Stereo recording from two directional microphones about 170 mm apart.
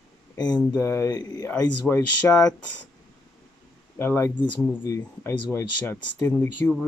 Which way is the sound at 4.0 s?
15° left (ahead or behind).